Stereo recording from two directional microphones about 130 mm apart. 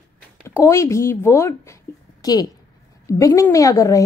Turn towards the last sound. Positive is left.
turn(degrees=25)  # may be behind; listen again after turning